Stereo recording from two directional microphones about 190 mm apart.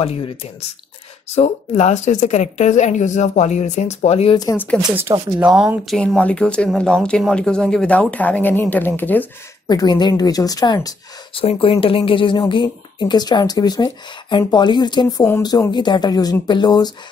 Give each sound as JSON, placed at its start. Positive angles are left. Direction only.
{"t": 0.0, "sound": "speech", "side_deg": 30}
{"t": 4.4, "sound": "speech", "side_deg": 15}
{"t": 5.4, "sound": "speech", "side_deg": -5}
{"t": 9.7, "sound": "a woman's voice", "side_deg": 20}